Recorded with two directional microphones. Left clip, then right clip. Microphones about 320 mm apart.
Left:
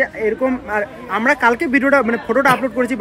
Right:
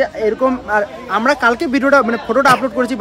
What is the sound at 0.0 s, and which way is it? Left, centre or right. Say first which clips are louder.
Speech: right 3 dB; centre.